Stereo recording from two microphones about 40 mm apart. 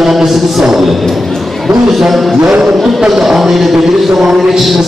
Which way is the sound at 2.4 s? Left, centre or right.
Centre.